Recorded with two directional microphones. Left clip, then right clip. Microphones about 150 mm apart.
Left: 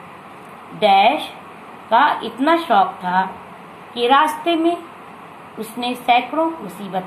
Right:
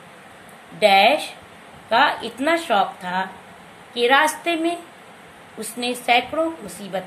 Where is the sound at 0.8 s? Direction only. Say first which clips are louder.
Left 1 dB; 65° right (ahead or behind).